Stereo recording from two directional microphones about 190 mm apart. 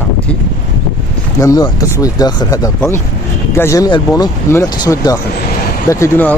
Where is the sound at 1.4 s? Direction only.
20° left (ahead or behind).